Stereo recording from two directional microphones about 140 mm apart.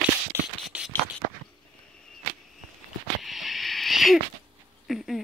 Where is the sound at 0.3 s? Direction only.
20° right (ahead or behind).